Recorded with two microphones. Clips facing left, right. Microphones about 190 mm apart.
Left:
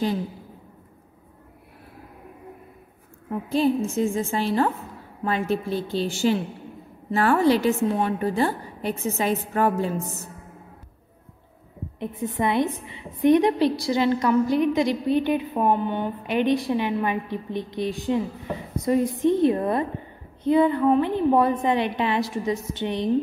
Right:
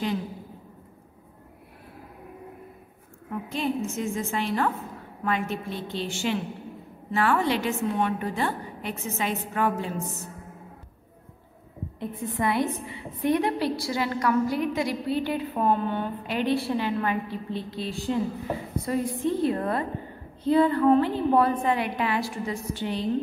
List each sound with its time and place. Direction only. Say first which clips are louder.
3.3 s a woman's voice: left 7 dB; 35° left (ahead or behind)
12.0 s a woman's voice: left 3 dB; 20° left (ahead or behind)